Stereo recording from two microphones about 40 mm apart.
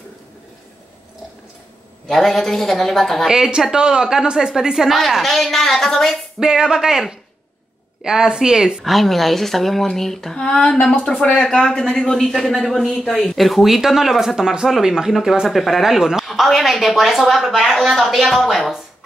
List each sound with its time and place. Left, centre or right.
2.0 s speech: centre
3.3 s a woman's voice: centre
4.9 s speech: centre
6.4 s a woman's voice: centre
8.8 s a woman's voice: centre